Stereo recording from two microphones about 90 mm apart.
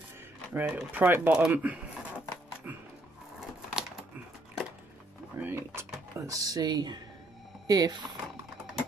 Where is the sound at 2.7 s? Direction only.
20° right (ahead or behind).